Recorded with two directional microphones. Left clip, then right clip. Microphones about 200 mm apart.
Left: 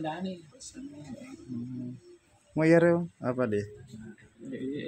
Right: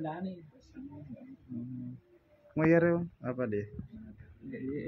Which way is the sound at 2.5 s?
25° left (ahead or behind).